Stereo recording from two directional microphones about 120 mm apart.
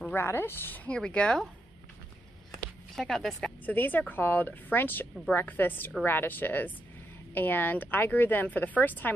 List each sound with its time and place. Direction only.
0.0 s speech: 20° left (ahead or behind)
3.0 s speech: centre (ahead or behind)
3.6 s speech: 15° left (ahead or behind)